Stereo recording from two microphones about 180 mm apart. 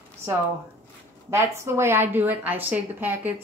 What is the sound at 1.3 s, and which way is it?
A woman's voice, 15° right (ahead or behind).